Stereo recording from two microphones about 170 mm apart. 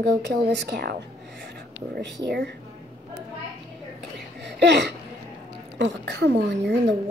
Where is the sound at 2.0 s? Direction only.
85° right.